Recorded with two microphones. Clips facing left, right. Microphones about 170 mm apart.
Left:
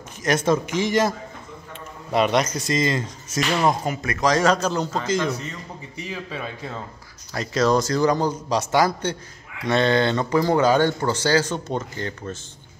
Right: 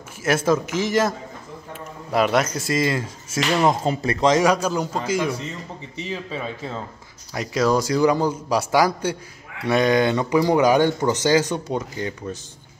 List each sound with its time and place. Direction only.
0.2 s a man's voice: 5° right (ahead or behind)
2.1 s a man's voice: centre (ahead or behind)
3.8 s speech: 30° right (ahead or behind)
4.4 s speech: 10° right (ahead or behind)
6.0 s a man's voice: centre (ahead or behind)
7.3 s speech: 10° right (ahead or behind)